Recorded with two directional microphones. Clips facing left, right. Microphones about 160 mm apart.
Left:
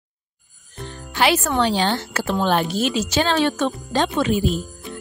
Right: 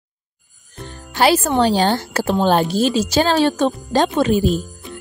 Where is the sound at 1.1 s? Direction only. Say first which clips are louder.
Right 4 dB; 35° right (ahead or behind).